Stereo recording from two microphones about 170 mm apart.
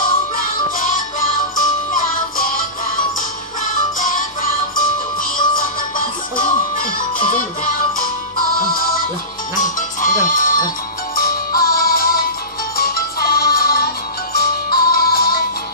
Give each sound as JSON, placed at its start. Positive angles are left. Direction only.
{"t": 1.6, "sound": "music", "side_deg": 50}
{"t": 4.0, "sound": "music", "side_deg": 50}
{"t": 9.6, "sound": "music", "side_deg": 50}